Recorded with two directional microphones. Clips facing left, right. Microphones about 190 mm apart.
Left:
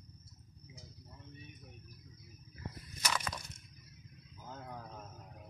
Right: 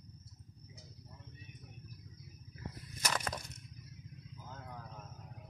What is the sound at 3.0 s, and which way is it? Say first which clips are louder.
Crushing: right 1 dB; 45° right (ahead or behind).